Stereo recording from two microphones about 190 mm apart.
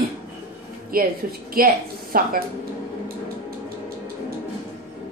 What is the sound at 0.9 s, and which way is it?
A woman's voice, 50° right (ahead or behind).